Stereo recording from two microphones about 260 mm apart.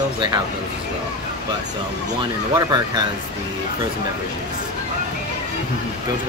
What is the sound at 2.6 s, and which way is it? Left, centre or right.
Speech, centre.